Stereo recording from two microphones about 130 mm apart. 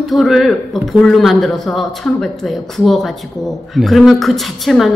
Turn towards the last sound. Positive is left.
turn(degrees=0)  # may be behind; listen again after turning